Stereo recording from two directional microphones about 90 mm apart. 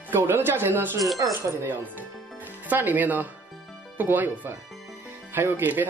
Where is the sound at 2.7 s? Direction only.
20° right (ahead or behind).